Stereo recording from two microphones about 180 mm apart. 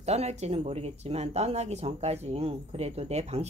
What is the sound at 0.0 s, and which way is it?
A woman's voice, 35° right (ahead or behind).